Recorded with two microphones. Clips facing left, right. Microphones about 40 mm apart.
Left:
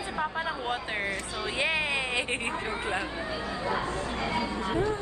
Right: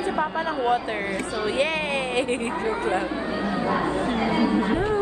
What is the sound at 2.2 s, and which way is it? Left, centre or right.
Speech, left.